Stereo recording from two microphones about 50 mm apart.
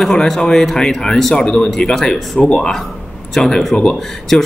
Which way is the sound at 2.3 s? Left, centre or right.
Centre.